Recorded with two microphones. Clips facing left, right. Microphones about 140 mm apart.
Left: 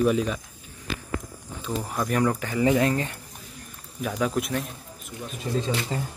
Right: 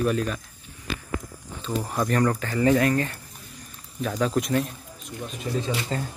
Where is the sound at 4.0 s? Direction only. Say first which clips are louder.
Right 1 dB; 10° left (ahead or behind).